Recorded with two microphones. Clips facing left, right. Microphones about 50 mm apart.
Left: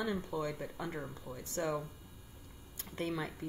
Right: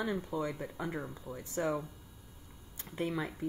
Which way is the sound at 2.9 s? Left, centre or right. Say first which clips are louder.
Right 2 dB; centre.